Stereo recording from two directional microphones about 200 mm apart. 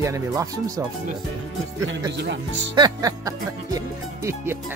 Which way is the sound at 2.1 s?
60° right (ahead or behind).